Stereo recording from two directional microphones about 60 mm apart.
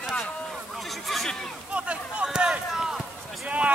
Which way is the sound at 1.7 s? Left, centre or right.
Right.